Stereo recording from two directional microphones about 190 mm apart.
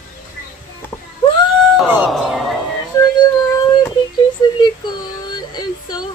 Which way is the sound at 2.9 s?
20° left (ahead or behind).